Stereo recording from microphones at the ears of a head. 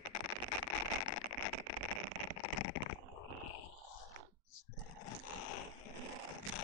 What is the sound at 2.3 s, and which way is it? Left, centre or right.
Stomach rumble, left.